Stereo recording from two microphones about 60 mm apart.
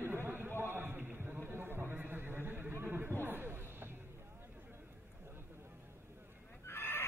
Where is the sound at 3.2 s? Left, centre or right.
Right.